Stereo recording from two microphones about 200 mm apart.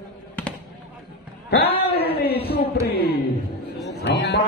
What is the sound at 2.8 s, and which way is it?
A man's voice, 50° left (ahead or behind).